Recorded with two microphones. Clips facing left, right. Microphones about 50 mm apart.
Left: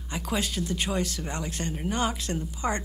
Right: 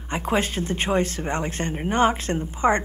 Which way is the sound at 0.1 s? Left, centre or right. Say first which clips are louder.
Right 6 dB; right.